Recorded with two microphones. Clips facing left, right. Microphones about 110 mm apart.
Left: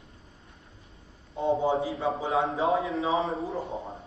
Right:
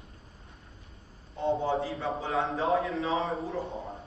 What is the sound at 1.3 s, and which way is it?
A man's voice, 25° left (ahead or behind).